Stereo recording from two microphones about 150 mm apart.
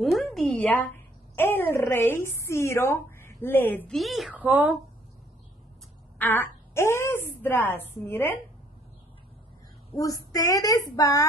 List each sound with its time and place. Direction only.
0.0 s a sound: centre (ahead or behind)
1.3 s a woman's voice: 15° left (ahead or behind)
3.9 s a woman's voice: centre (ahead or behind)
4.4 s speech: 10° right (ahead or behind)
6.1 s a woman's voice: 15° left (ahead or behind)
9.9 s a woman's voice: 25° left (ahead or behind)